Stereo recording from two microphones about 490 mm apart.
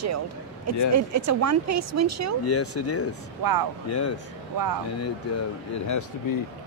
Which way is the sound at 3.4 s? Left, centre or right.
Right.